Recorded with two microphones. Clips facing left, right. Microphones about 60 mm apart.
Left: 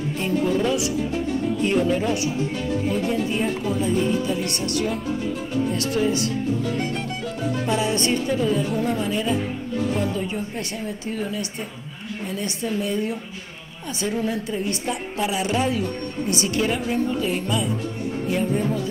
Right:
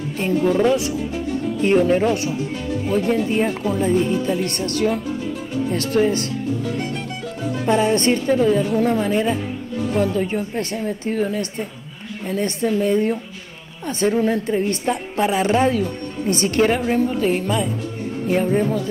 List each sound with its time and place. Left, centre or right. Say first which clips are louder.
0.2 s speech: right 5 dB; right
7.6 s a woman's voice: right 7 dB; right